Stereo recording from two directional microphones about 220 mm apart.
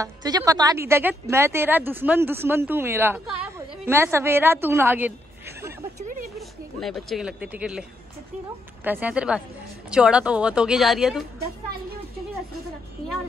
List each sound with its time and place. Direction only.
0.0 s speech: 15° right (ahead or behind)
5.9 s a sound: 35° right (ahead or behind)
6.3 s speech: centre (ahead or behind)
8.8 s a woman's voice: 10° right (ahead or behind)